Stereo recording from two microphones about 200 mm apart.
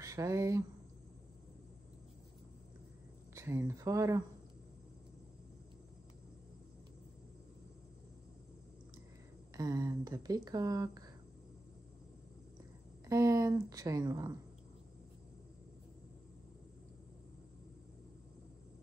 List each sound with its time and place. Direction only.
0.0 s speech: 15° right (ahead or behind)
3.3 s speech: 15° right (ahead or behind)
9.6 s speech: 15° right (ahead or behind)
13.0 s speech: 15° right (ahead or behind)